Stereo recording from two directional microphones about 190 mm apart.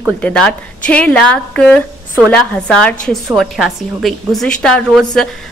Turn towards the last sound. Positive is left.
turn(degrees=5)  # may be behind; listen again after turning